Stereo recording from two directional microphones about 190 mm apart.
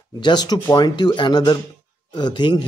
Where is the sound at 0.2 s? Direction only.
20° left (ahead or behind).